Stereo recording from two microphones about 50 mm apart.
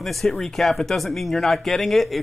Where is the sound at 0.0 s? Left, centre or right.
Centre.